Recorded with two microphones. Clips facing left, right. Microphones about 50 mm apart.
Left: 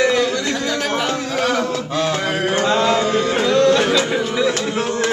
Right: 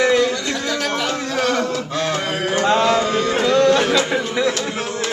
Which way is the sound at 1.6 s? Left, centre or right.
Centre.